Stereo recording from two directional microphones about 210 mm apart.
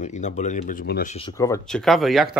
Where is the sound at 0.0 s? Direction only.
35° left (ahead or behind).